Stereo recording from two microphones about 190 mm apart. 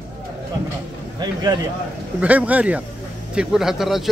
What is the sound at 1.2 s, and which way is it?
Speech, 20° right (ahead or behind).